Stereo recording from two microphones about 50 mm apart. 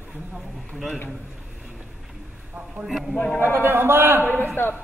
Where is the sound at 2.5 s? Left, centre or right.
Centre.